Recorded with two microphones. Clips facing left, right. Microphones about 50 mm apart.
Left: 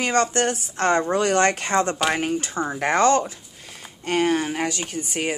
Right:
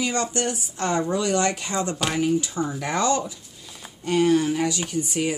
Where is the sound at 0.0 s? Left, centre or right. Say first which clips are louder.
Left 4 dB; left.